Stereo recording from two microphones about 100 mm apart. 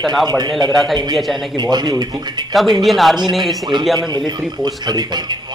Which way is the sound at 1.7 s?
45° right (ahead or behind).